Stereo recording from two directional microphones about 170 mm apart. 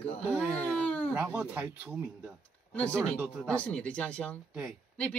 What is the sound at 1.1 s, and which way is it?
Speech, 5° right (ahead or behind).